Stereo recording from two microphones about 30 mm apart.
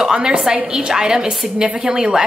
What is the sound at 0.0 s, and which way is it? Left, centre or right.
A woman's voice, right.